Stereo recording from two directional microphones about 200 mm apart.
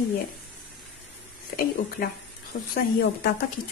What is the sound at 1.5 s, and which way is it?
Speech, 55° left (ahead or behind).